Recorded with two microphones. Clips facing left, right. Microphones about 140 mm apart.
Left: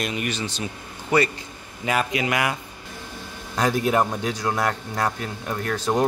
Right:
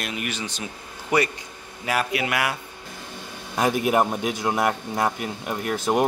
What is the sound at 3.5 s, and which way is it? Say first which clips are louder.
A man's voice: even; 10° right (ahead or behind).